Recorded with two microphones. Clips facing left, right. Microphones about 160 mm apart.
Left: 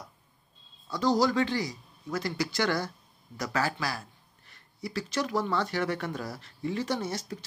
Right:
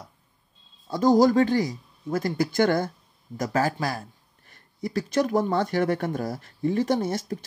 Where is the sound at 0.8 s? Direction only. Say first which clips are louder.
Right 7 dB; 50° right (ahead or behind).